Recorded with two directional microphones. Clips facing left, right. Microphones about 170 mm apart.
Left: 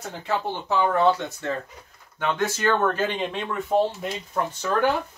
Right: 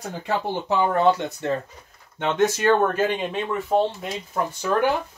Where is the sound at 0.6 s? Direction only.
15° right (ahead or behind).